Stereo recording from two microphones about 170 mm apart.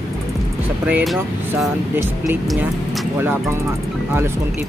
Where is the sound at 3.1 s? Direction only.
10° right (ahead or behind).